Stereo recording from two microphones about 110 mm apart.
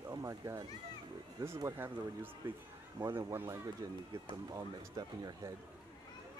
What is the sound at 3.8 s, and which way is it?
Speech, 35° right (ahead or behind).